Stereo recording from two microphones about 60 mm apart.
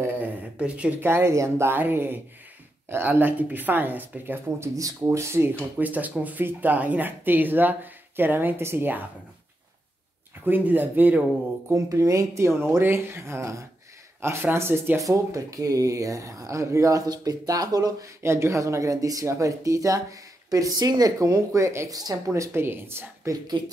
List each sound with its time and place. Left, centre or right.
0.6 s speech: centre
1.0 s speech: right
1.3 s speech: right
1.7 s speech: right
5.1 s speech: right
5.8 s speech: right
10.4 s speech: right
11.7 s speech: right
14.2 s speech: right
15.0 s speech: right
18.2 s speech: right
19.2 s speech: right
22.3 s speech: right
23.3 s speech: right